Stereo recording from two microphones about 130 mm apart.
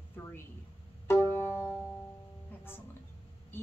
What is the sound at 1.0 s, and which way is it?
Music, 20° left (ahead or behind).